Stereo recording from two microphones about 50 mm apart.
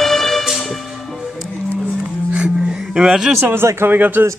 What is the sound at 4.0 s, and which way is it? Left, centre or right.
Speech, right.